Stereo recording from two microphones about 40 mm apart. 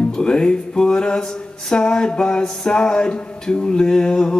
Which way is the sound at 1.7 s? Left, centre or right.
Left.